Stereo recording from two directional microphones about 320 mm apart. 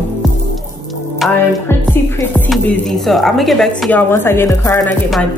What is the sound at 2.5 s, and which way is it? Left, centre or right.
Speech, centre.